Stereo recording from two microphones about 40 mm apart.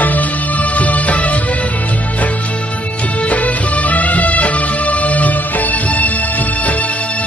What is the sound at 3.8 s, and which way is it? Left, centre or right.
Music, left.